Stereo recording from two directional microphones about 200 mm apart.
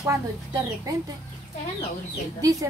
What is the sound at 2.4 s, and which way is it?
Speech, 15° right (ahead or behind).